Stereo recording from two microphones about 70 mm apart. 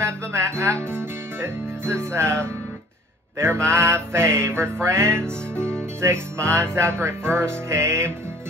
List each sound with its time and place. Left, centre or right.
0.0 s music: right
3.6 s music: right